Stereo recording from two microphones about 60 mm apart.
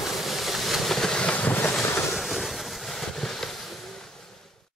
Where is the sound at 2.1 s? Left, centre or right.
Centre.